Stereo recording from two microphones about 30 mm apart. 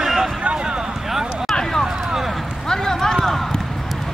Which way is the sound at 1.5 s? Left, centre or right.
Centre.